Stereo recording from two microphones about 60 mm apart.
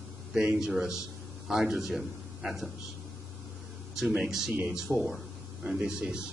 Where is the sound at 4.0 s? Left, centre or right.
Centre.